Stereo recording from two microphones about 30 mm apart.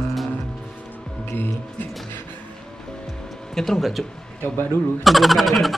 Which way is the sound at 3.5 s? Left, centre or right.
Centre.